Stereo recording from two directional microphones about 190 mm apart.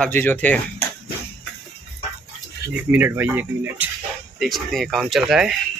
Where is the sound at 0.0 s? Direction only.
10° left (ahead or behind).